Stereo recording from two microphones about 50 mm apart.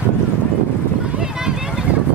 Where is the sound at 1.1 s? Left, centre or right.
Centre.